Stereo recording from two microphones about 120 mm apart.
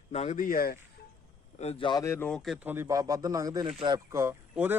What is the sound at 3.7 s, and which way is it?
Speech, 45° right (ahead or behind).